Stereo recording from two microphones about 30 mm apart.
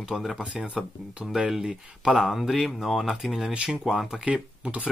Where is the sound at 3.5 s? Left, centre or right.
Right.